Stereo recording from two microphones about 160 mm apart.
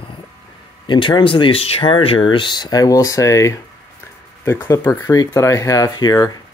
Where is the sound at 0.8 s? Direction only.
30° left (ahead or behind).